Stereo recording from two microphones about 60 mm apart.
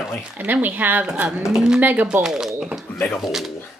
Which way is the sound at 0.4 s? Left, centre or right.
Right.